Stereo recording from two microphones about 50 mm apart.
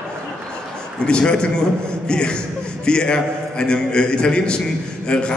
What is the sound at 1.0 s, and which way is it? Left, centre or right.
A man's voice, centre.